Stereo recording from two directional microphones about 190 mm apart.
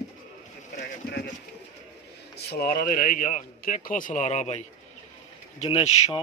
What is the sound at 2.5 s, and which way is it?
Speech, 50° left (ahead or behind).